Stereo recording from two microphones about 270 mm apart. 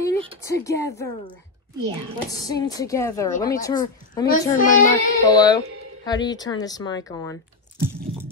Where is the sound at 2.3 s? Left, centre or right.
Centre.